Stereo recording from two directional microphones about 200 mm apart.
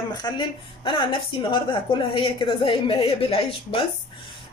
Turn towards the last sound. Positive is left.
turn(degrees=25)  # may be behind; listen again after turning